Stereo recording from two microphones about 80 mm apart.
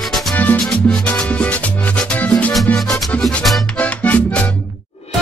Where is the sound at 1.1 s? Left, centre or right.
Centre.